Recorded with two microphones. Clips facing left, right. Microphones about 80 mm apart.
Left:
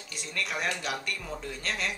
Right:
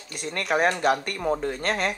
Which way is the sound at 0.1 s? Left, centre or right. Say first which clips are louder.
Right 9 dB; right.